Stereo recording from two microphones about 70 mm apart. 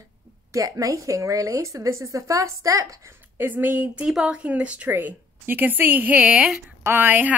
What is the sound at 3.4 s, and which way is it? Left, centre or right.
Speech, right.